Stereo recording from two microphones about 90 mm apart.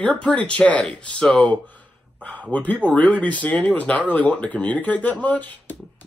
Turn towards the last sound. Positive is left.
turn(degrees=20)  # may be behind; listen again after turning